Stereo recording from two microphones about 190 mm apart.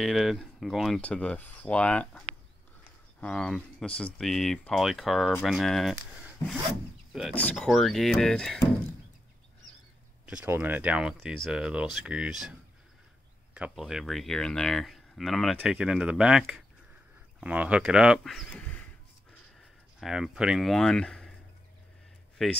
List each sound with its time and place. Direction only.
0.0 s speech: centre (ahead or behind)
6.4 s rub: 15° left (ahead or behind)
7.1 s speech: centre (ahead or behind)
10.2 s speech: 10° right (ahead or behind)
13.6 s speech: 5° right (ahead or behind)
20.0 s speech: 5° right (ahead or behind)
22.4 s speech: centre (ahead or behind)